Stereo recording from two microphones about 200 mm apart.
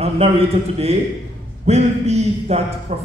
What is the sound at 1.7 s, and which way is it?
A man's voice, 35° right (ahead or behind).